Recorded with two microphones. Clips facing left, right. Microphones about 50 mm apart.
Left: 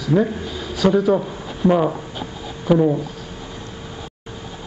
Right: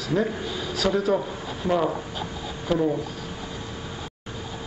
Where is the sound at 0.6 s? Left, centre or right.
Left.